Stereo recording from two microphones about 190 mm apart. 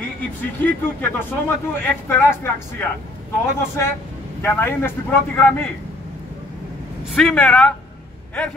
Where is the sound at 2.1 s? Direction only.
15° left (ahead or behind).